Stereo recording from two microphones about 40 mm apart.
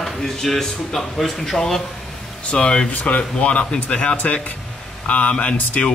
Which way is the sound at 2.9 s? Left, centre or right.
Left.